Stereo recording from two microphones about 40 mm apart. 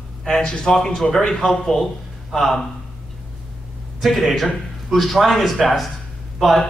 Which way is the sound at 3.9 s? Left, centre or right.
Centre.